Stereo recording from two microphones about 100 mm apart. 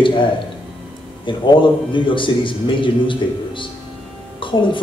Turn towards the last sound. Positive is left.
turn(degrees=55)  # may be behind; listen again after turning